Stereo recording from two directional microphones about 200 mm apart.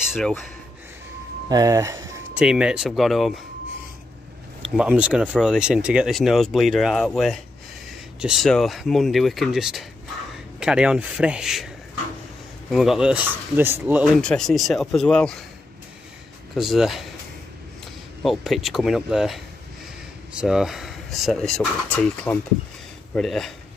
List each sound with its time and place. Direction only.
0.1 s speech: centre (ahead or behind)
1.5 s speech: 15° right (ahead or behind)
2.3 s speech: 5° right (ahead or behind)
4.6 s speech: 5° right (ahead or behind)
12.7 s speech: centre (ahead or behind)
16.5 s speech: centre (ahead or behind)
18.2 s speech: centre (ahead or behind)